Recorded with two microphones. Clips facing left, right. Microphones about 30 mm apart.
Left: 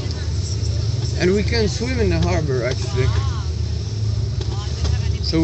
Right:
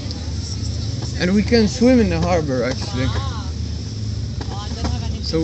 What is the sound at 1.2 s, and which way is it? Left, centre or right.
Speech, right.